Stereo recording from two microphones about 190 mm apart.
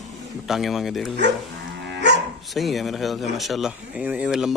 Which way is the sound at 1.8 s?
65° right (ahead or behind).